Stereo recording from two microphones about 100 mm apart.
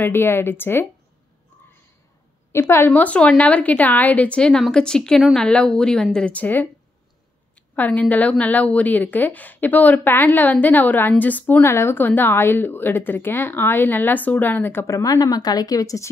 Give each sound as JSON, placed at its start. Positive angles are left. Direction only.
{"t": 0.0, "sound": "a woman's voice", "side_deg": 25}
{"t": 2.7, "sound": "a woman's voice", "side_deg": 20}
{"t": 15.0, "sound": "speech", "side_deg": 40}